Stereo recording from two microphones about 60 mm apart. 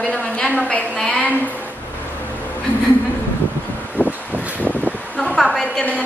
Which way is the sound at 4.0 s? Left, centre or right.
Left.